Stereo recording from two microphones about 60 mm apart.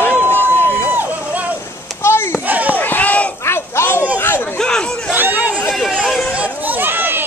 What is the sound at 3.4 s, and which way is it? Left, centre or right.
Crowd, left.